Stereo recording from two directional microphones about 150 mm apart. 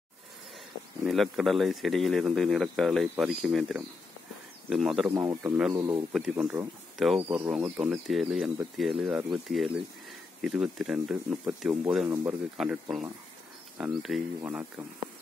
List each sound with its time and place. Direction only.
1.0 s speech: centre (ahead or behind)
5.1 s a man's voice: 20° right (ahead or behind)
7.8 s speech: 5° right (ahead or behind)